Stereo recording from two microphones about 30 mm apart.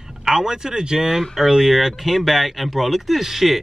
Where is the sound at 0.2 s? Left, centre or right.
Centre.